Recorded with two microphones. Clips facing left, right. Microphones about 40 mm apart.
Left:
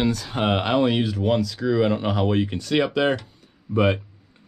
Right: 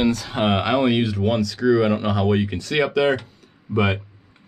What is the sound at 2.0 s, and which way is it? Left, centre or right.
Speech, right.